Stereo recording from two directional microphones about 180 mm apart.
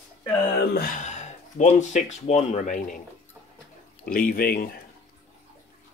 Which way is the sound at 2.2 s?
45° left (ahead or behind).